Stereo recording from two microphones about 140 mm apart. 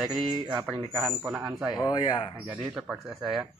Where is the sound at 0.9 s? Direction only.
10° right (ahead or behind).